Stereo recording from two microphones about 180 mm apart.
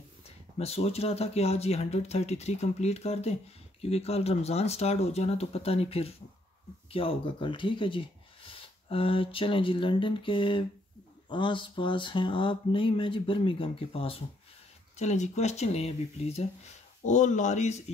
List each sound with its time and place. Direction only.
0.6 s speech: 35° left (ahead or behind)